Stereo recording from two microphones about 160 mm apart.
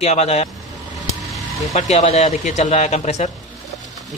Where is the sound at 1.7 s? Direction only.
45° left (ahead or behind).